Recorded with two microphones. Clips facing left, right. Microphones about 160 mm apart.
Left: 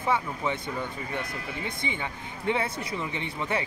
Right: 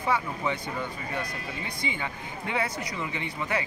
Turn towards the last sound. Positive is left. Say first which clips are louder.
# left 1 dB
turn(degrees=25)  # may be behind; listen again after turning